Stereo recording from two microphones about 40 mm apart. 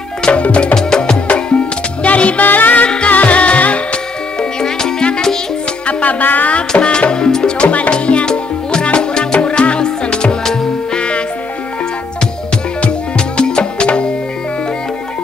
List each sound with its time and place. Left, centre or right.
0.2 s music: left
0.7 s music: centre; by 2.4 s left
2.4 s music: left
4.4 s music: centre
5.9 s music: left
6.7 s music: left
7.5 s music: left; by 10.7 s centre
11.0 s music: left
13.4 s music: left